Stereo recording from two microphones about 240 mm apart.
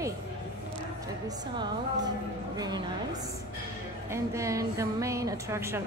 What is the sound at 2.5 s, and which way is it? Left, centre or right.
Speech, centre.